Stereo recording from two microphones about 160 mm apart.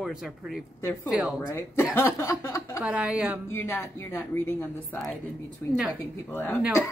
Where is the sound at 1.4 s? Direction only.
15° left (ahead or behind).